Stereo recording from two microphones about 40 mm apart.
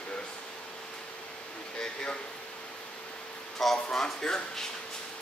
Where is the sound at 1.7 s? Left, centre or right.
Left.